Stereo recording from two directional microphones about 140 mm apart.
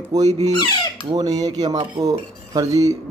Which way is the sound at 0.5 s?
30° left (ahead or behind).